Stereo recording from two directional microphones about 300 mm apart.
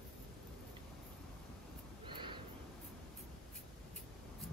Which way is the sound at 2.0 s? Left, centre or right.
Centre.